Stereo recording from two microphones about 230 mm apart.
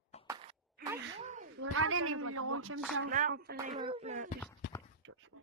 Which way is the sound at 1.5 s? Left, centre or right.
Right.